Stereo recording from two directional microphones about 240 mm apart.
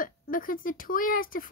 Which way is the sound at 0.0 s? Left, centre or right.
Left.